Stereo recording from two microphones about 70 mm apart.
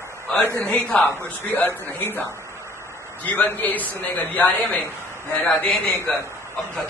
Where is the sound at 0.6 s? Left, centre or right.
Left.